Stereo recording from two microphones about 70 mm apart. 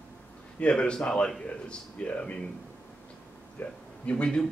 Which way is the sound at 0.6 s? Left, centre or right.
Centre.